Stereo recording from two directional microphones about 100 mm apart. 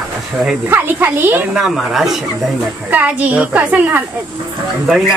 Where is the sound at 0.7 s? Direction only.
20° right (ahead or behind).